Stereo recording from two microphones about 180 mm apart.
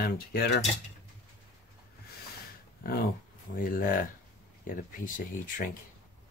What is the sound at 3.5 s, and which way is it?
Speech, 50° left (ahead or behind).